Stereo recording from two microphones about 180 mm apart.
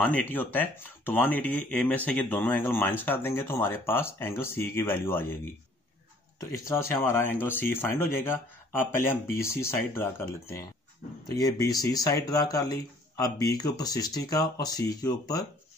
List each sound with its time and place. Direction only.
0.0 s speech: 10° left (ahead or behind)
6.5 s speech: 15° left (ahead or behind)